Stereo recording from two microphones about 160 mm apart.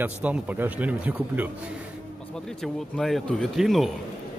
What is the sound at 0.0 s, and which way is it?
Speech, 10° right (ahead or behind).